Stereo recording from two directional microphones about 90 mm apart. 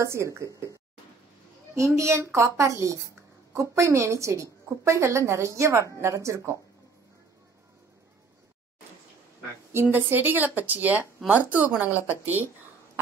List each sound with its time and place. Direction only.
0.0 s a woman's voice: 30° right (ahead or behind)
1.8 s a woman's voice: 35° right (ahead or behind)
9.7 s a woman's voice: 25° right (ahead or behind)